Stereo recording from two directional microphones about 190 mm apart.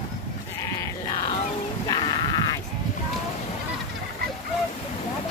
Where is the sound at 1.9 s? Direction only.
25° left (ahead or behind).